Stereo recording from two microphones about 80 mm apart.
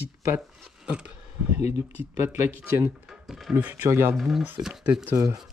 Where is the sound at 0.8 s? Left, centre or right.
Centre.